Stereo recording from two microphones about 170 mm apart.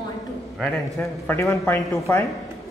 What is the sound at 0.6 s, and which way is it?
Speech, 10° left (ahead or behind).